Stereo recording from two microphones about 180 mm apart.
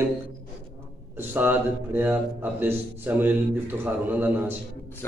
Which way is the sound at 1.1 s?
10° right (ahead or behind).